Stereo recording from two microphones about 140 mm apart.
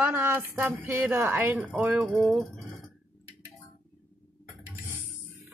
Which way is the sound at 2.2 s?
5° left (ahead or behind).